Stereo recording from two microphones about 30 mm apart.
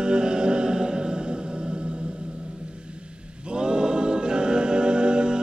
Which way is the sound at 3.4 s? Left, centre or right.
Right.